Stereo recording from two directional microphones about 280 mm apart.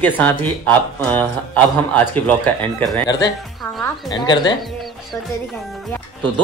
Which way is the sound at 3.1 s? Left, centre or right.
Centre.